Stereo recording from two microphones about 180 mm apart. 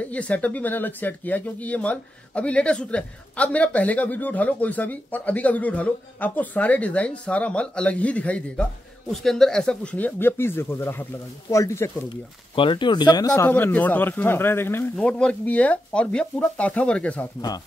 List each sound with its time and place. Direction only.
0.0 s speech: 5° left (ahead or behind)
12.1 s speech: 25° left (ahead or behind)
13.3 s speech: 10° left (ahead or behind)